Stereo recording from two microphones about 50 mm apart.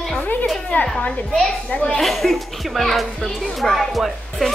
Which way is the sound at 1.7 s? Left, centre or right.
Left.